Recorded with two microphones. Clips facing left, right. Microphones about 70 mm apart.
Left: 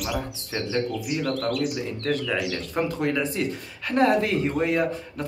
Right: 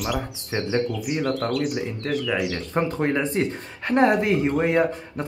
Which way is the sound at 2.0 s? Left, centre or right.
Centre.